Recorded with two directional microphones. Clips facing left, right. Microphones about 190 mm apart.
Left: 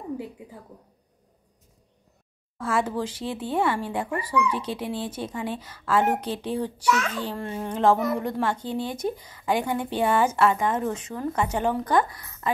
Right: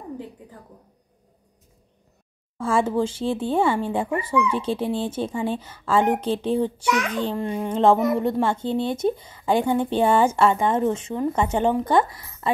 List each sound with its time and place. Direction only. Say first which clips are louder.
2.5 s a child's voice: right 4 dB; 30° right (ahead or behind)
7.7 s speech: right 3 dB; 25° right (ahead or behind)